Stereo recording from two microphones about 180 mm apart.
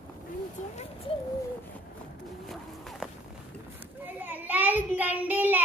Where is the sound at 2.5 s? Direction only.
Centre (ahead or behind).